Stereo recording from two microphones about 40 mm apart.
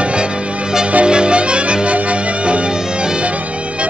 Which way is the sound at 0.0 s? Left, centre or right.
Right.